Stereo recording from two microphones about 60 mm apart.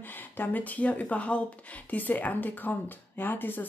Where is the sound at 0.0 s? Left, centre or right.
Left.